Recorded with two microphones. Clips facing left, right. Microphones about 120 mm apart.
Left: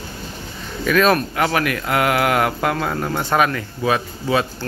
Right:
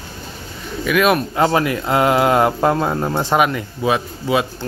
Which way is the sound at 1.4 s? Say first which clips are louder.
Right 3 dB; 25° right (ahead or behind).